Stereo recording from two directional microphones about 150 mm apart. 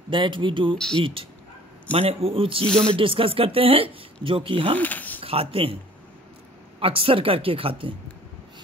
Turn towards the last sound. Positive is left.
turn(degrees=-40)  # may be behind; listen again after turning